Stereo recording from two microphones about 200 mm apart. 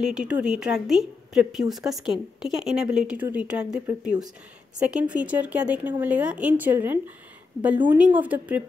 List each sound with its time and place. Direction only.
0.0 s a woman's voice: 5° right (ahead or behind)